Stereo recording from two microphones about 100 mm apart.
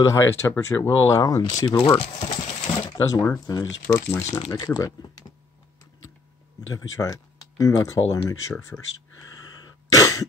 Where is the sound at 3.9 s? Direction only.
20° left (ahead or behind).